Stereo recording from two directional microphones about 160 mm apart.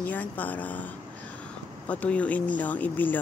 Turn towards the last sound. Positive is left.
turn(degrees=10)  # may be behind; listen again after turning